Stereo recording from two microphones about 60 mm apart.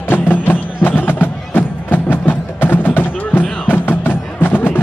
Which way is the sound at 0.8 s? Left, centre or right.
Left.